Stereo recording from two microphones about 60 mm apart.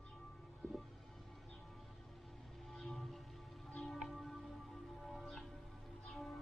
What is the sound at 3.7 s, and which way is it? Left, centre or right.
Music, centre.